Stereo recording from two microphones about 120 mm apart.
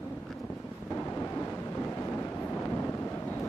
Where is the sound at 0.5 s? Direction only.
15° left (ahead or behind).